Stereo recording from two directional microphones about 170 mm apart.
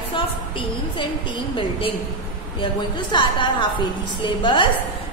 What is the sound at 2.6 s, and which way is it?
A woman's voice, 30° left (ahead or behind).